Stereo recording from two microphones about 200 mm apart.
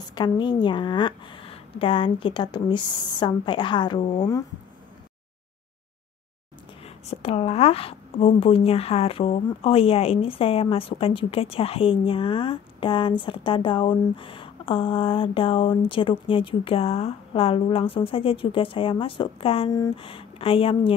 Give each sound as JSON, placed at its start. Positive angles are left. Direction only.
{"t": 0.1, "sound": "a woman's voice", "side_deg": 20}
{"t": 7.1, "sound": "a woman's voice", "side_deg": 30}